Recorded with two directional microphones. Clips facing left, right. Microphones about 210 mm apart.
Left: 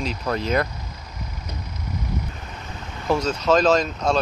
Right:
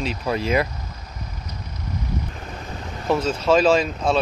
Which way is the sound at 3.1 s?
5° right (ahead or behind).